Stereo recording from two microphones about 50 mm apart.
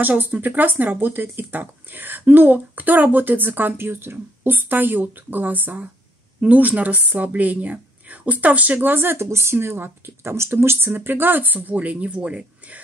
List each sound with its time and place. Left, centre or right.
0.0 s speech: right
8.9 s speech: right
9.2 s speech: right
10.9 s speech: right